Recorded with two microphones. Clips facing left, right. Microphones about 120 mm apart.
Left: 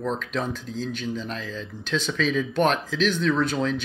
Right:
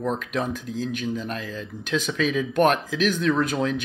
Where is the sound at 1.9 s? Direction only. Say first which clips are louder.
Right 1 dB; 10° right (ahead or behind).